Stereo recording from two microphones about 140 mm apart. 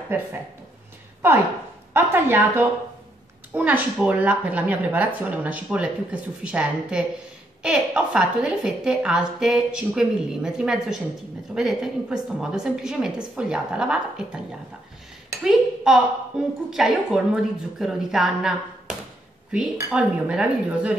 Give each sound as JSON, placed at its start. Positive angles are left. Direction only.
{"t": 0.1, "sound": "a woman's voice", "side_deg": -15}
{"t": 2.0, "sound": "a woman's voice", "side_deg": -15}
{"t": 15.4, "sound": "a woman's voice", "side_deg": -5}